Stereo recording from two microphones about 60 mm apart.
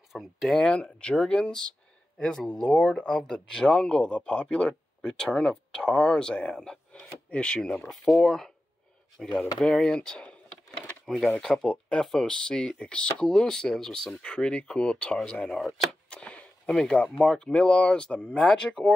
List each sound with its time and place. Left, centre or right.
0.1 s speech: centre
0.6 s speech: centre
9.6 s speech: centre
11.4 s speech: centre
14.2 s speech: centre
15.5 s speech: centre
16.1 s a sound: centre
16.7 s speech: centre